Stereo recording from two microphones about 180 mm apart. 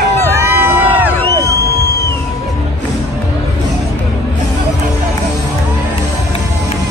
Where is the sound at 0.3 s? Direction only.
15° right (ahead or behind).